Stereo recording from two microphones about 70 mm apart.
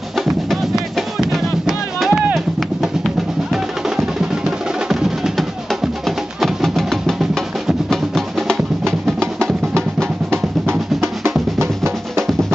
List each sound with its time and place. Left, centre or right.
0.2 s music: centre
11.0 s drum: right